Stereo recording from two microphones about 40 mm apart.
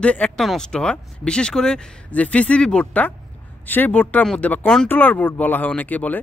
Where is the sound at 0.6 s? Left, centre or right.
Centre.